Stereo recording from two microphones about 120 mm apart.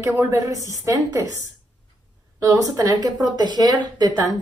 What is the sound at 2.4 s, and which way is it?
Speech, 30° right (ahead or behind).